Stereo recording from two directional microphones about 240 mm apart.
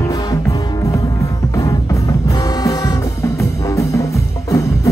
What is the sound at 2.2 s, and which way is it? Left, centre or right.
Music, centre.